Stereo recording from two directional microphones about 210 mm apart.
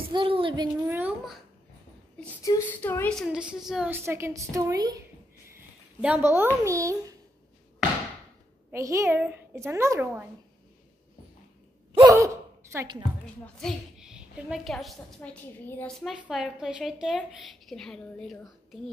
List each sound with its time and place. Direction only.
0.0 s child singing: 25° right (ahead or behind)
0.8 s a woman's voice: 10° right (ahead or behind)
2.4 s a woman's voice: 10° left (ahead or behind); by 4.9 s 15° right (ahead or behind)
5.9 s a woman's voice: 10° right (ahead or behind)
8.7 s a woman's voice: 15° right (ahead or behind)
11.9 s gasp: 15° right (ahead or behind)
12.7 s a woman's voice: 20° right (ahead or behind)
13.6 s a woman's voice: centre (ahead or behind)